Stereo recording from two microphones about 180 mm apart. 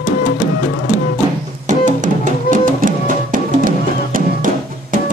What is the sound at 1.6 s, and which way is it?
Music, 45° right (ahead or behind).